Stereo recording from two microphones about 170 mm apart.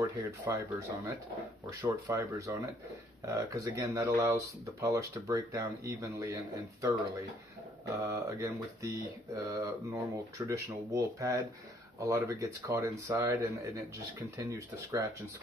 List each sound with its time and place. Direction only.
0.0 s speech: 15° right (ahead or behind)